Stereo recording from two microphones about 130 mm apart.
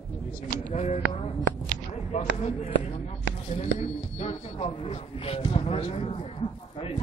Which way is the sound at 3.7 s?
50° left (ahead or behind).